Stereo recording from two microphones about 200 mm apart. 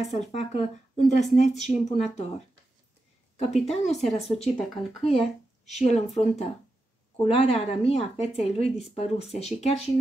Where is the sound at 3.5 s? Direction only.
Centre (ahead or behind).